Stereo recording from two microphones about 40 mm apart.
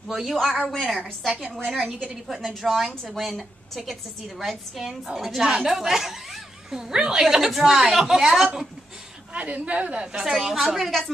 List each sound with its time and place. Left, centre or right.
0.1 s a woman's voice: centre
0.6 s a woman's voice: centre
1.7 s a woman's voice: centre
9.3 s a woman's voice: right
10.2 s a woman's voice: centre